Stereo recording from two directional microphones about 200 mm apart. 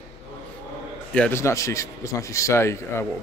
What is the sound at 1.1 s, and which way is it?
A man's voice, 10° left (ahead or behind).